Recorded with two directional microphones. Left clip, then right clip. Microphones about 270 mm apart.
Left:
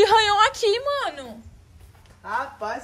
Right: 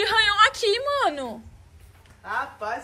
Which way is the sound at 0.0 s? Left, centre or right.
Left.